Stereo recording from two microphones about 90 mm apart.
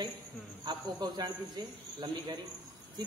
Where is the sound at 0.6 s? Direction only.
60° right (ahead or behind).